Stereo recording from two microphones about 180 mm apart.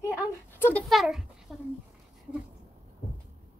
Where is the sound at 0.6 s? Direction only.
10° left (ahead or behind).